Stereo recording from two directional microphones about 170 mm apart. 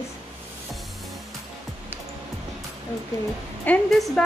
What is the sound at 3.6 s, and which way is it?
Speech, 5° left (ahead or behind).